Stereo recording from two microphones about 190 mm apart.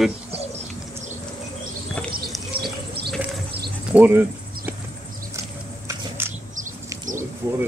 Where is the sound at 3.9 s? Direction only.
10° right (ahead or behind).